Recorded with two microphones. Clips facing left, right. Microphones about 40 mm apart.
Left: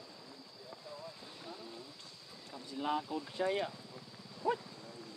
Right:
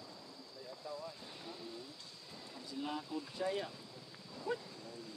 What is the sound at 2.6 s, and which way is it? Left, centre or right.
Speech, left.